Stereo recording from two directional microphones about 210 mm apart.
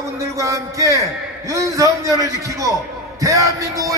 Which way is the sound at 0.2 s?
15° right (ahead or behind).